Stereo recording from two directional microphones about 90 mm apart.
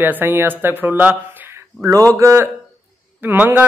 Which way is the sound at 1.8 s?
40° right (ahead or behind).